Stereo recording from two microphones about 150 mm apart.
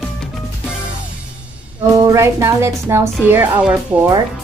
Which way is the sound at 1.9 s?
20° right (ahead or behind).